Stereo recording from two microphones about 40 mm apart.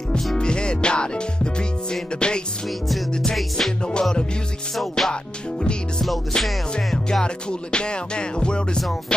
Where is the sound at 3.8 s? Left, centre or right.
Left.